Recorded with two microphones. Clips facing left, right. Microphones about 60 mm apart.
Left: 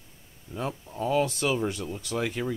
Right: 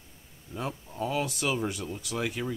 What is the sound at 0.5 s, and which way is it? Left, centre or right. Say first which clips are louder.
Speech: left 2 dB; centre.